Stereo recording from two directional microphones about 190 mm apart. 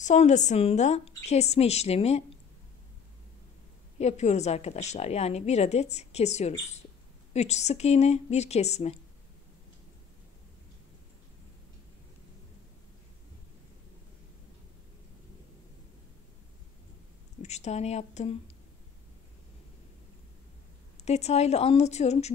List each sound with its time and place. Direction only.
0.0 s a woman's voice: 40° left (ahead or behind)
4.0 s a woman's voice: 35° left (ahead or behind)
17.4 s speech: 35° left (ahead or behind)
21.0 s a woman's voice: 35° left (ahead or behind)